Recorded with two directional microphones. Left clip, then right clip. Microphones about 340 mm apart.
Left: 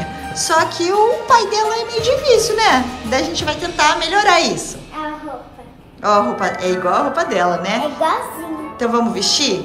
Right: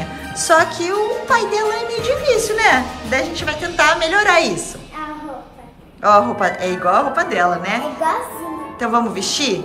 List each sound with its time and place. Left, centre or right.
0.4 s a woman's voice: centre
6.0 s a woman's voice: centre